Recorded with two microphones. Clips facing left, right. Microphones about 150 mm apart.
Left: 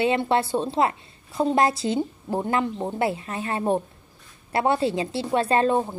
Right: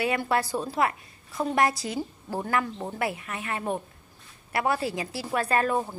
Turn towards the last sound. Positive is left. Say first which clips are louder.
# left 4 dB
turn(degrees=25)  # may be behind; listen again after turning